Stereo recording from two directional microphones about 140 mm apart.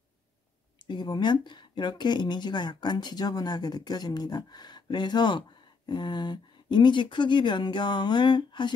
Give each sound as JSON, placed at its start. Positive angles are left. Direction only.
{"t": 0.8, "sound": "speech", "side_deg": 30}